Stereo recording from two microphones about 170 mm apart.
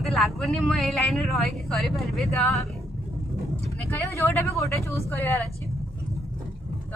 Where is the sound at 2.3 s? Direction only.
15° left (ahead or behind).